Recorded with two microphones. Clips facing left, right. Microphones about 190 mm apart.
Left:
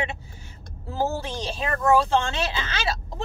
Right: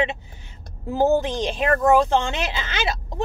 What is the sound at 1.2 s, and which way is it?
Speech, 20° right (ahead or behind).